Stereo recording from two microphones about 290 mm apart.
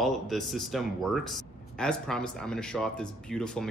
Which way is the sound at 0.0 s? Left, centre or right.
Centre.